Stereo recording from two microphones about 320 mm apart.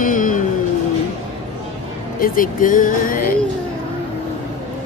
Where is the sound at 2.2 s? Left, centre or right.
Left.